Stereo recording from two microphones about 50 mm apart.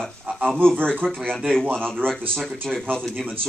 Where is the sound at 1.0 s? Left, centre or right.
Right.